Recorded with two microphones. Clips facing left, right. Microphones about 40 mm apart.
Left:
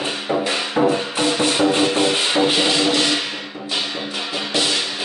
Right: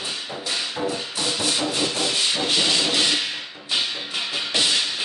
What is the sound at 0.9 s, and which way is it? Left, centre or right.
Music, left.